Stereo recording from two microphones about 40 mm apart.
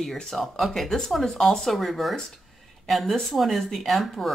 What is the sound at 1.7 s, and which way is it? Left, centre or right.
Speech, centre.